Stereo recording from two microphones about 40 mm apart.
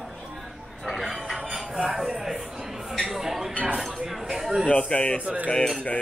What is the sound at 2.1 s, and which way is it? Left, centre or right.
A man's voice, centre.